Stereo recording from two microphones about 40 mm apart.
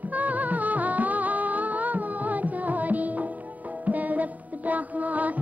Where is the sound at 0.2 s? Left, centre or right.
Right.